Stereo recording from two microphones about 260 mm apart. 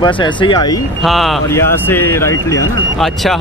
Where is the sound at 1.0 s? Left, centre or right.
Centre.